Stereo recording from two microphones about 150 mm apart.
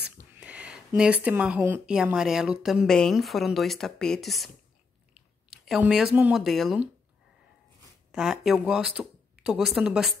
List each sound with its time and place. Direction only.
0.3 s speech: 10° right (ahead or behind)
5.1 s a sound: 5° right (ahead or behind)
6.4 s speech: centre (ahead or behind)
8.1 s speech: 5° right (ahead or behind)